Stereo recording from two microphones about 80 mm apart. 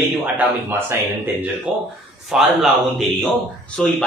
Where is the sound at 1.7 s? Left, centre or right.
Centre.